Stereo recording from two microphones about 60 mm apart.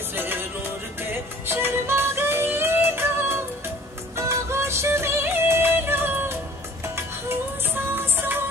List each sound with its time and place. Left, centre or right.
0.1 s music: right